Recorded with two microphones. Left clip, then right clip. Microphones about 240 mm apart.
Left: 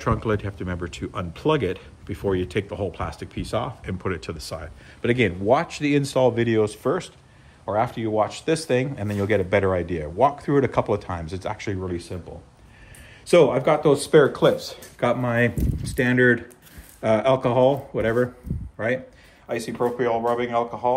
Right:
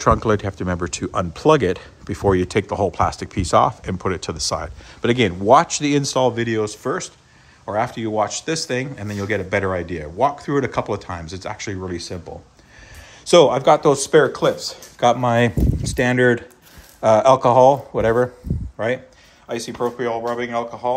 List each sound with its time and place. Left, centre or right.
0.0 s speech: right
13.2 s speech: centre
19.4 s speech: centre